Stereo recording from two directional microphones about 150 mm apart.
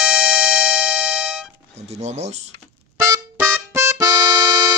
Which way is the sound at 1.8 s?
45° right (ahead or behind).